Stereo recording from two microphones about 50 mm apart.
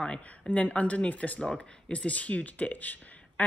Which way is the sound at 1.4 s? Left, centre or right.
Centre.